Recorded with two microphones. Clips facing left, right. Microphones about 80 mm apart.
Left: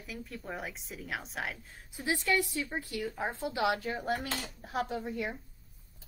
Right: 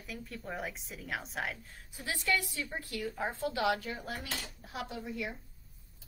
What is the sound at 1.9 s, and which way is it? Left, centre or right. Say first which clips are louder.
A woman's voice: left 3 dB; left.